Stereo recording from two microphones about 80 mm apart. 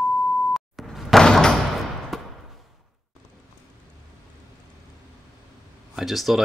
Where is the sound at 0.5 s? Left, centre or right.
Centre.